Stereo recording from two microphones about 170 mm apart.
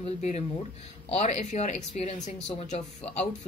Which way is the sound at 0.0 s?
40° left (ahead or behind).